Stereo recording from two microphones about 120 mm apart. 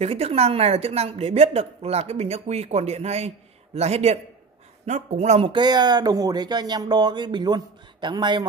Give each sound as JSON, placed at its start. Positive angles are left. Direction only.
{"t": 0.0, "sound": "a man's voice", "side_deg": -55}
{"t": 5.5, "sound": "speech", "side_deg": -35}